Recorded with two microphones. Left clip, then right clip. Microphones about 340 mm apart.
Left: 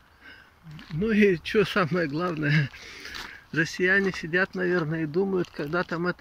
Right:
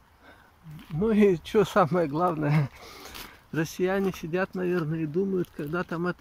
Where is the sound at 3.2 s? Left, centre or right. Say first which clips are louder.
Left 4 dB; centre.